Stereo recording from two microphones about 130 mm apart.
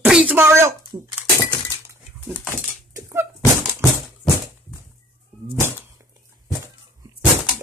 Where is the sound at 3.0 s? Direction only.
15° right (ahead or behind).